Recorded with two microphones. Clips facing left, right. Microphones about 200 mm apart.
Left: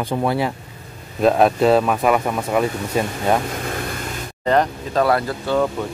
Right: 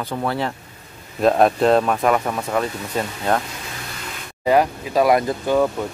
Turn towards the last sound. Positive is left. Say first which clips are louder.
# right 2 dB
turn(degrees=-15)  # may be behind; listen again after turning